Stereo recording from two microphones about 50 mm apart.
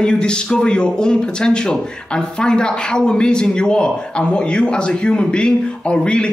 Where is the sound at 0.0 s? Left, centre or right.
Centre.